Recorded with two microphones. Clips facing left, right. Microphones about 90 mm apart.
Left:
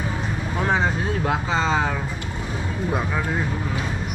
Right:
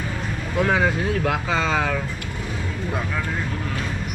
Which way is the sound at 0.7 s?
25° left (ahead or behind).